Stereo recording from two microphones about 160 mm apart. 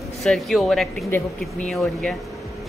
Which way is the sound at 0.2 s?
Centre (ahead or behind).